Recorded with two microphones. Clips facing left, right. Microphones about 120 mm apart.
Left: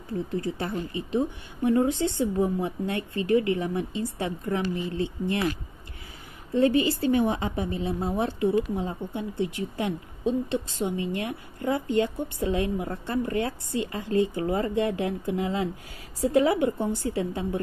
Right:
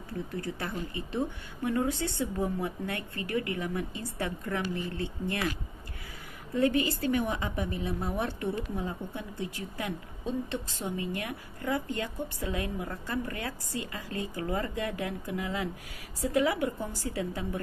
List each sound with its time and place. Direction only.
0.6 s speech: 25° left (ahead or behind)
6.5 s speech: 25° left (ahead or behind)